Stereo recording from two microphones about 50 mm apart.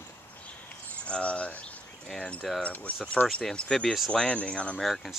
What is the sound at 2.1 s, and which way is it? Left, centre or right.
Speech, left.